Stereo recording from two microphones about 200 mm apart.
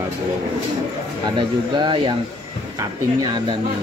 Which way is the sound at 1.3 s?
25° right (ahead or behind).